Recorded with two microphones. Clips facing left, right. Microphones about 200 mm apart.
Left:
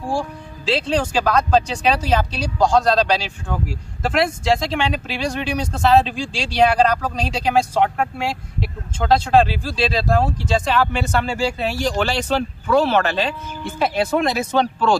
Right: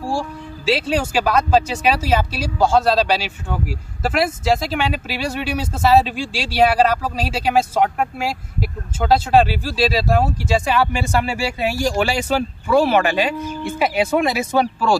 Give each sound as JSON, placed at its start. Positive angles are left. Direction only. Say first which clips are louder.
{"t": 0.7, "sound": "speech", "louder": "right 1 dB", "side_deg": -10}